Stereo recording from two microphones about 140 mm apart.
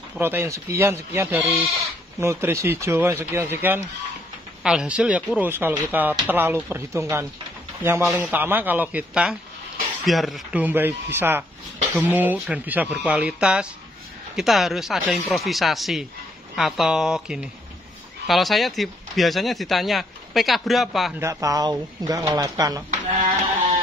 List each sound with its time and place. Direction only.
0.2 s speech: 15° right (ahead or behind); by 10.6 s centre (ahead or behind)
10.6 s speech: 15° right (ahead or behind)
21.2 s speech: 25° right (ahead or behind)